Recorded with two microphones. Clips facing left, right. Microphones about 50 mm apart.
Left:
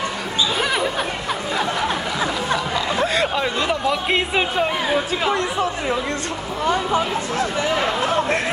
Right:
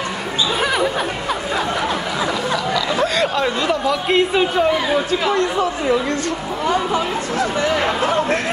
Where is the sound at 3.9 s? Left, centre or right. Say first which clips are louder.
Right 3 dB; centre.